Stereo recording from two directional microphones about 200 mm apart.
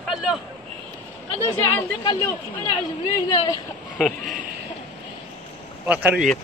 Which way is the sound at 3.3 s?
20° left (ahead or behind).